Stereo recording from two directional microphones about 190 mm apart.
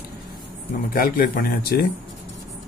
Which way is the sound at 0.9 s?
50° left (ahead or behind).